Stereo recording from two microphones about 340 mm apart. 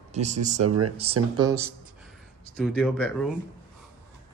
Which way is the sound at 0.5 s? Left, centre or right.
Right.